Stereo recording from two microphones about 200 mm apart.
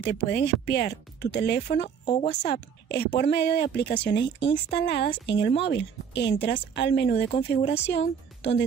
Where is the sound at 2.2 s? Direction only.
55° left (ahead or behind).